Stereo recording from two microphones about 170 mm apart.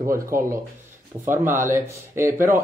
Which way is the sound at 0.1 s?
15° right (ahead or behind).